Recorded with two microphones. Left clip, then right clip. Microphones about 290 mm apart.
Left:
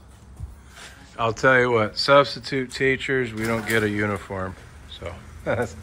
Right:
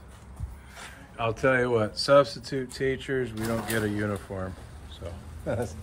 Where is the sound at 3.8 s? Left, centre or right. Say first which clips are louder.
Left 6 dB; right.